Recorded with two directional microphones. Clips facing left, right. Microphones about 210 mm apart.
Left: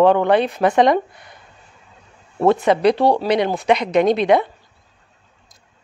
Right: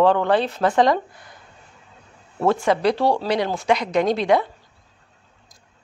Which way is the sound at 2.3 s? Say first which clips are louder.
Left 4 dB; 20° left (ahead or behind).